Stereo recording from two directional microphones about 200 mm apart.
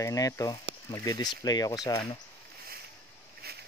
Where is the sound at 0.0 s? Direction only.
15° left (ahead or behind).